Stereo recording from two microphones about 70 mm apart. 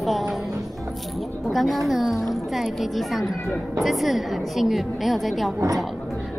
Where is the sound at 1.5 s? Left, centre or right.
Centre.